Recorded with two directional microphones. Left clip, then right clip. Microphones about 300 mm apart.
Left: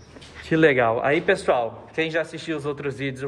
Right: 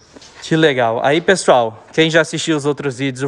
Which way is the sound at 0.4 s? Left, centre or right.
Centre.